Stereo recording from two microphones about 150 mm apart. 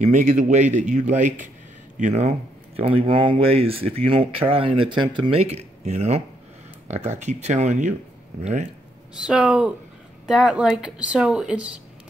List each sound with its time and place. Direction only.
0.0 s speech: 50° right (ahead or behind)
9.2 s speech: 5° right (ahead or behind)